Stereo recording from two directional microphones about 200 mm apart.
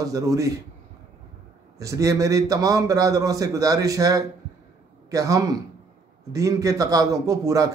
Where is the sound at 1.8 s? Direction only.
15° right (ahead or behind).